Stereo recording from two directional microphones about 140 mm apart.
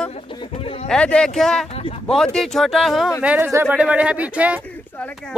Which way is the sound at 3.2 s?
10° right (ahead or behind).